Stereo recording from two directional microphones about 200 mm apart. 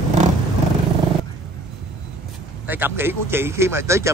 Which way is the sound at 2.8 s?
10° right (ahead or behind).